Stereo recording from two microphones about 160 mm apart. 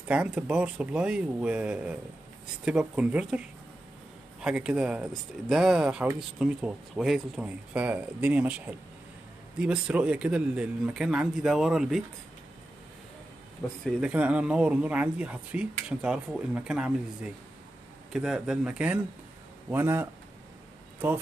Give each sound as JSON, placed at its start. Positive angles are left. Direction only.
{"t": 0.1, "sound": "speech", "side_deg": -5}
{"t": 13.6, "sound": "speech", "side_deg": 20}
{"t": 14.0, "sound": "speech", "side_deg": -10}